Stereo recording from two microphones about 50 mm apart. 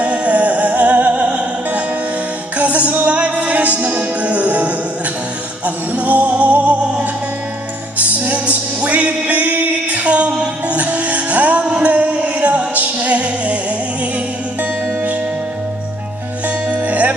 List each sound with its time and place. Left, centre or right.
0.0 s music: right
5.9 s music: right
8.2 s music: right
16.7 s music: right